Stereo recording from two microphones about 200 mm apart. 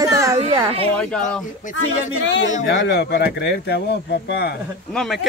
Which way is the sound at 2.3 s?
65° left (ahead or behind).